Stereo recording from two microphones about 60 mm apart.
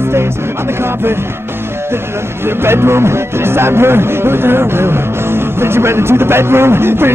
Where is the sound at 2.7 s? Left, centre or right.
Right.